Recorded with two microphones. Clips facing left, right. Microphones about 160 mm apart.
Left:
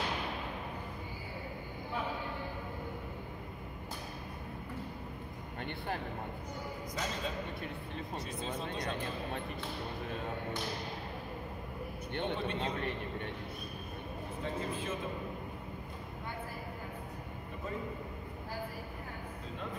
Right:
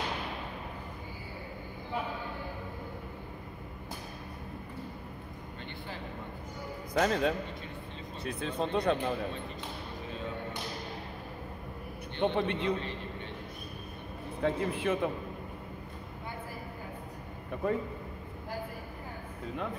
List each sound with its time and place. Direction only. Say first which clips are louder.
6.9 s speech: right 12 dB; 70° right (ahead or behind)
12.2 s speech: right 6 dB; 65° right (ahead or behind)
14.4 s speech: right 8 dB; 65° right (ahead or behind)
17.6 s speech: right 10 dB; 65° right (ahead or behind)